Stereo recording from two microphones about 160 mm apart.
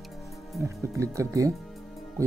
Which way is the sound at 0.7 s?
20° right (ahead or behind).